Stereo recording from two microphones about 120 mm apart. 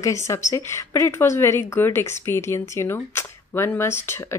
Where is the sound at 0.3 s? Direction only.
20° left (ahead or behind).